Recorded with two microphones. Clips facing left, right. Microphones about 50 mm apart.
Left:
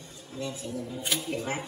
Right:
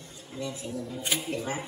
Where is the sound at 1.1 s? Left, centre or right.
Centre.